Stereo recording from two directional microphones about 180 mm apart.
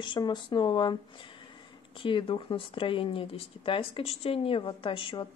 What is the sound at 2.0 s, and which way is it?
Speech, 30° left (ahead or behind).